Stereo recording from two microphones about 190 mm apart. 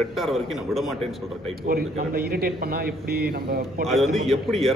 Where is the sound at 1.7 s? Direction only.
50° right (ahead or behind).